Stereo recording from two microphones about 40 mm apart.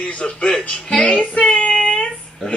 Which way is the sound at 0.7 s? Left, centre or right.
Left.